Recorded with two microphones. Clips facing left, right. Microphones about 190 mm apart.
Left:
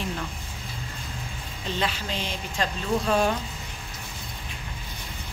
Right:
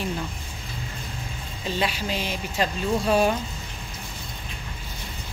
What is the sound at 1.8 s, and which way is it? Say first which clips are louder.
Speech: right 3 dB; 10° right (ahead or behind).